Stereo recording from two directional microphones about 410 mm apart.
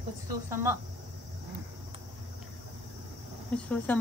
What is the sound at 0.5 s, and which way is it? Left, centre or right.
Speech, centre.